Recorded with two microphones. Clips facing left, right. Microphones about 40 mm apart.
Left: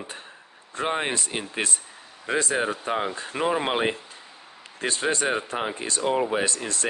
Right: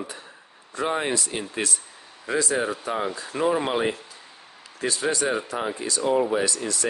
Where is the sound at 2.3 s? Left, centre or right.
Left.